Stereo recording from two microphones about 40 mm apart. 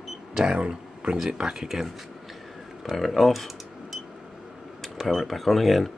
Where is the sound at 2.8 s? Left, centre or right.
Centre.